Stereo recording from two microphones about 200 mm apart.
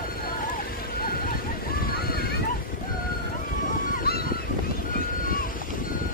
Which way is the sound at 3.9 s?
50° left (ahead or behind).